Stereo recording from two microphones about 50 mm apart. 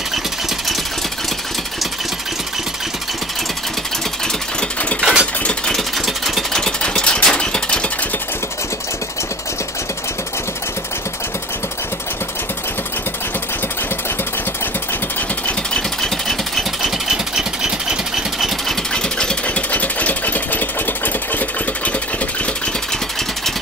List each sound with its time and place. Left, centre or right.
5.0 s sewing machine: centre
5.7 s engine: centre
6.5 s engine: centre
7.3 s a sound: left
16.0 s engine: centre
16.8 s engine: centre
18.9 s engine: centre
19.4 s engine: left